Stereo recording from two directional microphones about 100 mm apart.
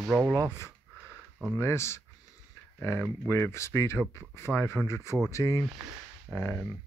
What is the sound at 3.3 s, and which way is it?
Speech, 25° left (ahead or behind).